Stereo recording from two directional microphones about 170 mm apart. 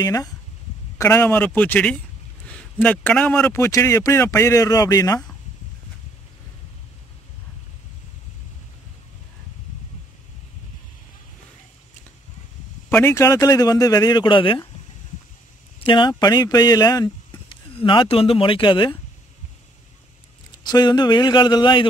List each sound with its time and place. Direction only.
0.0 s a man's voice: 20° left (ahead or behind)
12.9 s a man's voice: 15° left (ahead or behind)
15.8 s speech: 30° left (ahead or behind)
20.6 s a man's voice: 25° left (ahead or behind)